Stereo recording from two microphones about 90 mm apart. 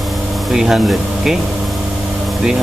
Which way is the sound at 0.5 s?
5° right (ahead or behind).